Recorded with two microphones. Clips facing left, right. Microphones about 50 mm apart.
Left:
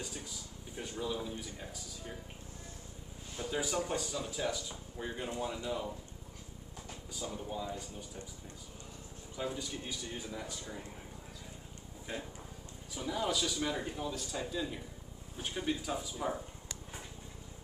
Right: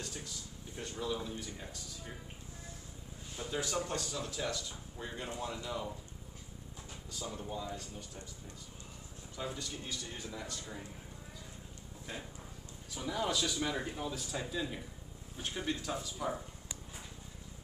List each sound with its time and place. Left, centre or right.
0.0 s a sound: centre
1.1 s speech: centre
3.3 s speech: centre
7.1 s speech: centre
9.3 s speech: centre
12.1 s speech: centre
12.9 s speech: centre